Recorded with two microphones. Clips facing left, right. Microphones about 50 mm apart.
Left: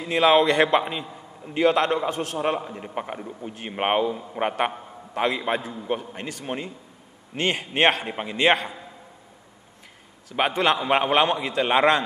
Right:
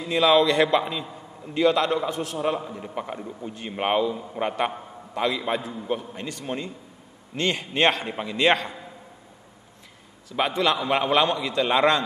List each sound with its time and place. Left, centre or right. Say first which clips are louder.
0.1 s a man's voice: left 1 dB; left
3.2 s a man's voice: even; centre
3.5 s a man's voice: left 1 dB; left
6.4 s a man's voice: even; left
8.4 s a man's voice: left 1 dB; centre
10.3 s a man's voice: left 1 dB; left